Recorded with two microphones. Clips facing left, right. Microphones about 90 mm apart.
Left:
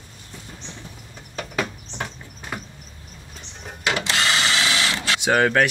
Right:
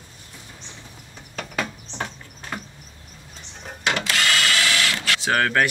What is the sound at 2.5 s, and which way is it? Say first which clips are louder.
Vehicle: even; 5° left (ahead or behind).